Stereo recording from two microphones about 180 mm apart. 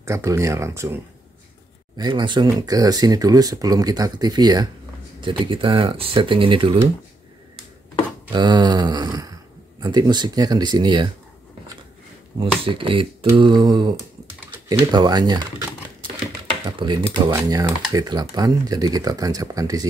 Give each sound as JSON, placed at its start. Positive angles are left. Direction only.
{"t": 0.0, "sound": "speech", "side_deg": -15}
{"t": 2.0, "sound": "speech", "side_deg": -25}
{"t": 8.3, "sound": "speech", "side_deg": -25}
{"t": 12.4, "sound": "speech", "side_deg": -30}
{"t": 16.6, "sound": "speech", "side_deg": -25}